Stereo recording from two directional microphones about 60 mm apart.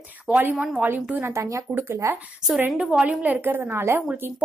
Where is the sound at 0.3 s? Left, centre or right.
Right.